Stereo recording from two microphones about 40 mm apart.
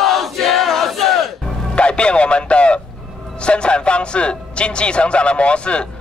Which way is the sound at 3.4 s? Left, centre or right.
Left.